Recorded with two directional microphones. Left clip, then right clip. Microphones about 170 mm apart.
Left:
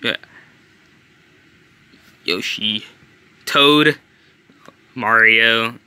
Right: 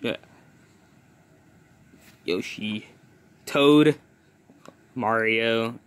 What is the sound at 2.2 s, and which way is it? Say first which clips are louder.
Speech: left 9 dB; centre (ahead or behind).